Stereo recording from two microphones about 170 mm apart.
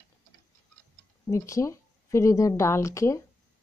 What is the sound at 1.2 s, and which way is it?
Speech, 15° left (ahead or behind).